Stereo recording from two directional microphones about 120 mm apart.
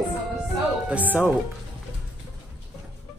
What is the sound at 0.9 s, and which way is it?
Speech, 15° right (ahead or behind).